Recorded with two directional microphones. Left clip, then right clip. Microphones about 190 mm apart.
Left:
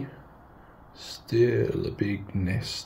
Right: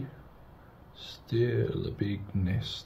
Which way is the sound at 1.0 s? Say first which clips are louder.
Left 7 dB; 10° left (ahead or behind).